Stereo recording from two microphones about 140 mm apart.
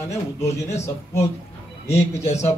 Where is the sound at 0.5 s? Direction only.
50° left (ahead or behind).